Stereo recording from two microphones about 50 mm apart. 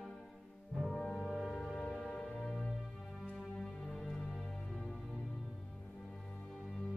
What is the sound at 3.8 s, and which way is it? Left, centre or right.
Music, centre.